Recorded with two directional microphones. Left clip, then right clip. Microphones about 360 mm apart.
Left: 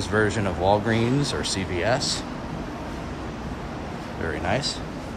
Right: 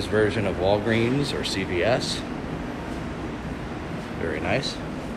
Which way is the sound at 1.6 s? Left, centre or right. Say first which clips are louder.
Right 2 dB; left.